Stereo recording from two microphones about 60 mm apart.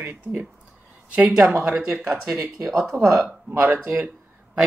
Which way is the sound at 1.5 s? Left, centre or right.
Centre.